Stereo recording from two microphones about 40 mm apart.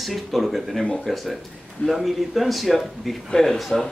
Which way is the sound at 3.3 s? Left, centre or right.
Centre.